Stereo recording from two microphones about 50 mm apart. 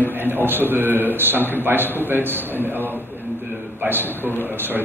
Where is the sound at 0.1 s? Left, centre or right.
Right.